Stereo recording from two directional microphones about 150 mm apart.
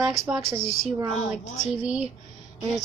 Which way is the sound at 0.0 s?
Centre (ahead or behind).